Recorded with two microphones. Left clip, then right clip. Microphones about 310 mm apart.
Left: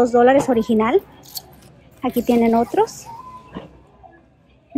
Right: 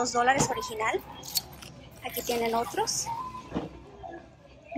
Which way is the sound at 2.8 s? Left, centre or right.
Centre.